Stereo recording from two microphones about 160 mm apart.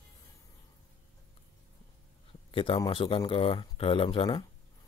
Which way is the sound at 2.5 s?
35° left (ahead or behind).